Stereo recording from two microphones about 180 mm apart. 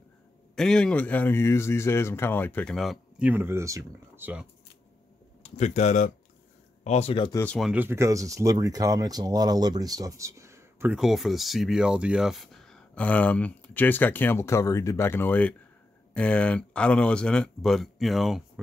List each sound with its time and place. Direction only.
0.6 s speech: 5° left (ahead or behind); by 4.3 s 15° right (ahead or behind)
5.4 s speech: 40° left (ahead or behind)
7.3 s speech: 5° left (ahead or behind)
7.7 s speech: 10° right (ahead or behind)